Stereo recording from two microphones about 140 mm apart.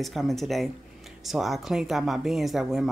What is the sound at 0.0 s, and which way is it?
Speech, centre (ahead or behind).